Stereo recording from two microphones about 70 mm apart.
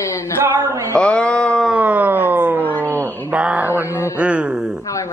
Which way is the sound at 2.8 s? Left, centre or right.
Right.